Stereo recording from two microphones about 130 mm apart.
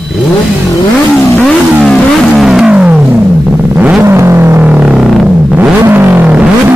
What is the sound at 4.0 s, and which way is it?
Vehicle, 20° right (ahead or behind).